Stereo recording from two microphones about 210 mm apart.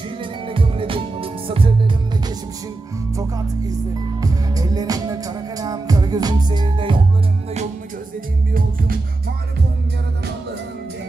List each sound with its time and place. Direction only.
0.2 s music: 25° right (ahead or behind)
8.5 s music: 45° right (ahead or behind)